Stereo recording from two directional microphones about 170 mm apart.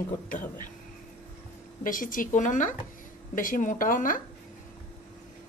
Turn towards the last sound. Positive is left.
turn(degrees=55)  # may be behind; listen again after turning